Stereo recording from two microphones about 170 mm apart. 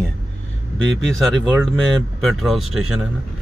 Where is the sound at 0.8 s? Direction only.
5° left (ahead or behind).